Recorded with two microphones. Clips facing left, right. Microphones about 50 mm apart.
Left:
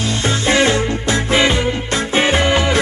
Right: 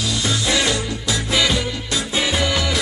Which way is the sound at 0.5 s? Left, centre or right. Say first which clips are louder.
Left 8 dB; left.